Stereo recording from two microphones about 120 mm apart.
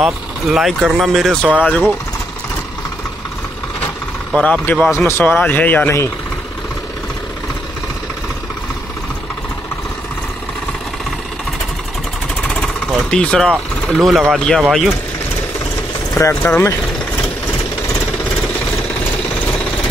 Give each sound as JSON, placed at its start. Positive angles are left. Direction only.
{"t": 0.0, "sound": "speech", "side_deg": 0}
{"t": 4.4, "sound": "speech", "side_deg": 10}
{"t": 12.5, "sound": "vehicle", "side_deg": 5}
{"t": 14.3, "sound": "speech", "side_deg": 5}
{"t": 16.2, "sound": "speech", "side_deg": 20}